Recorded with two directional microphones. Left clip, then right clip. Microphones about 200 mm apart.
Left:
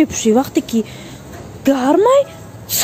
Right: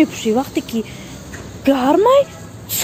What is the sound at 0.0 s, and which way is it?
Speech, 30° left (ahead or behind).